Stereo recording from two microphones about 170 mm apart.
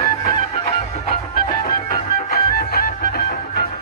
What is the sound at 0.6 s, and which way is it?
Music, 50° left (ahead or behind).